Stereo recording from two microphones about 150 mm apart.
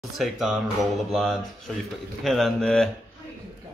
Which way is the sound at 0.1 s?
Centre (ahead or behind).